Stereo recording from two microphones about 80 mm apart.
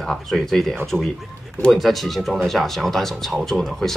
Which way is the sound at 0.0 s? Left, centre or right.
Centre.